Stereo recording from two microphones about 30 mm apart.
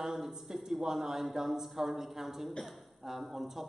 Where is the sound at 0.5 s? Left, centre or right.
Right.